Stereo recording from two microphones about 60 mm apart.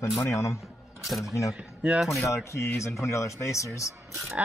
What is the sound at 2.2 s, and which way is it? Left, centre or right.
Speech, left.